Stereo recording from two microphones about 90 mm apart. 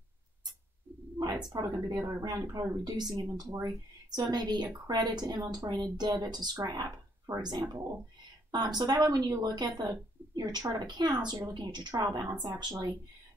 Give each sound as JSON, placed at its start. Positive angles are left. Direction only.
{"t": 1.5, "sound": "speech", "side_deg": -50}
{"t": 2.0, "sound": "speech", "side_deg": -35}
{"t": 2.5, "sound": "speech", "side_deg": -45}
{"t": 12.2, "sound": "speech", "side_deg": -40}